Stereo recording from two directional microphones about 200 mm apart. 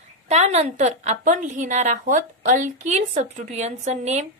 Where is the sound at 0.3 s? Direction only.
35° right (ahead or behind).